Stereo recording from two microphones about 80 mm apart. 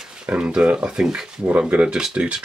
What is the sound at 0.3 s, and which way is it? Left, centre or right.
Speech, centre.